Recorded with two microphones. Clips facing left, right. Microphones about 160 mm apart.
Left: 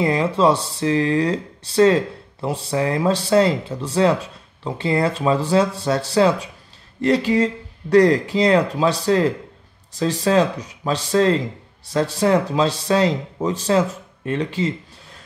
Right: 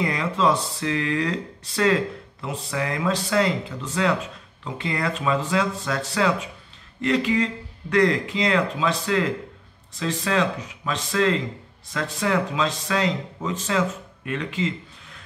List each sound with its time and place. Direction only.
0.0 s speech: 30° left (ahead or behind)